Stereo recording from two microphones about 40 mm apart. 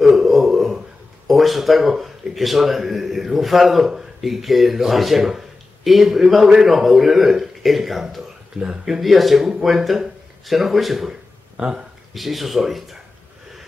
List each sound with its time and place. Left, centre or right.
0.0 s a sound: centre
1.2 s a man's voice: centre
8.6 s speech: right
9.0 s speech: centre
11.5 s speech: right
12.1 s speech: centre